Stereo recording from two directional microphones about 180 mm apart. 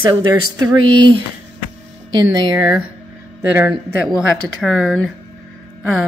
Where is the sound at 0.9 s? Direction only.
25° right (ahead or behind).